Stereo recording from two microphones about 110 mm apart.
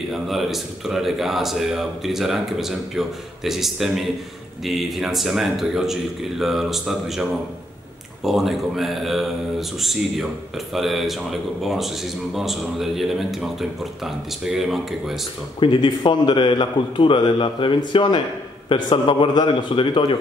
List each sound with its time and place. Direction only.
0.1 s a man's voice: centre (ahead or behind)
15.6 s a man's voice: 45° left (ahead or behind)